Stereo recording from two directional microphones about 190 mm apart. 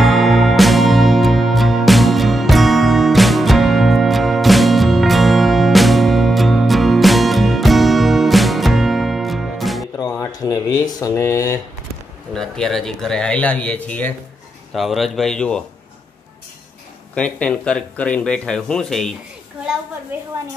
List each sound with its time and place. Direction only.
0.0 s music: centre (ahead or behind)
9.9 s a sound: 20° left (ahead or behind)
12.4 s speech: centre (ahead or behind)
17.1 s speech: 5° left (ahead or behind)